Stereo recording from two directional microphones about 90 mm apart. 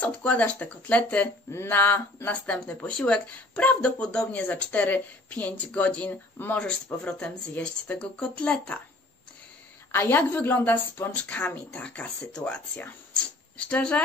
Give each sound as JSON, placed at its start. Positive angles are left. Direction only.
{"t": 0.0, "sound": "a woman's voice", "side_deg": 15}
{"t": 9.8, "sound": "a woman's voice", "side_deg": 25}